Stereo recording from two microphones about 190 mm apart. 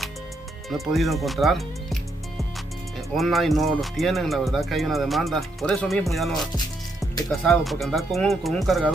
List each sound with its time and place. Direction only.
0.7 s speech: centre (ahead or behind)
6.5 s music: 20° left (ahead or behind)
7.2 s speech: centre (ahead or behind)